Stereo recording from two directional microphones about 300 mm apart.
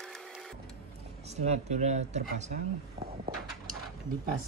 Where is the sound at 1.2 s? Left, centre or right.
Right.